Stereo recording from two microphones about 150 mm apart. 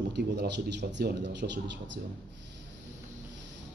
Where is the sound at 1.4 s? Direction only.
70° right (ahead or behind).